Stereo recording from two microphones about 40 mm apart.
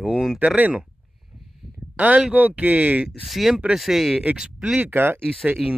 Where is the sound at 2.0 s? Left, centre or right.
Right.